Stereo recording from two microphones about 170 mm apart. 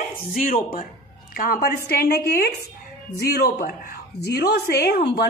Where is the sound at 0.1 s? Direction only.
60° left (ahead or behind).